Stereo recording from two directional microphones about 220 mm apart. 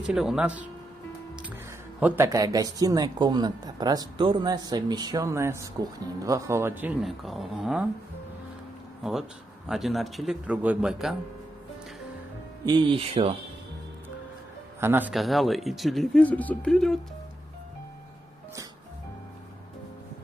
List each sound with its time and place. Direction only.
0.0 s speech: centre (ahead or behind)
2.0 s speech: 10° right (ahead or behind)
9.0 s speech: centre (ahead or behind)
12.6 s speech: 20° right (ahead or behind)
14.8 s speech: 10° right (ahead or behind)